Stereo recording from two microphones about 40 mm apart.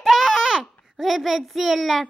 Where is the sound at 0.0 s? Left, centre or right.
Centre.